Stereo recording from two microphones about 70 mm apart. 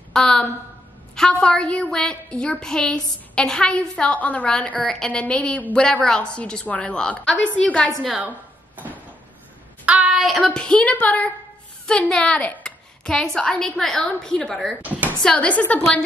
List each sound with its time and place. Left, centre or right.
0.1 s a woman's voice: centre
8.1 s a sound: right
9.8 s child singing: centre
10.1 s child singing: centre
10.4 s a woman's voice: centre
15.2 s a woman's voice: centre